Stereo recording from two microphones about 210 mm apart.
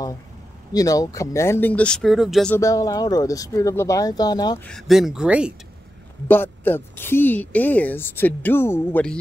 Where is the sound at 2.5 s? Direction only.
15° left (ahead or behind).